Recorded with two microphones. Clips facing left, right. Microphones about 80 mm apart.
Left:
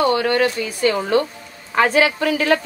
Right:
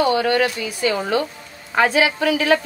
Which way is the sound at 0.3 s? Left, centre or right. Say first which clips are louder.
Left 1 dB; left.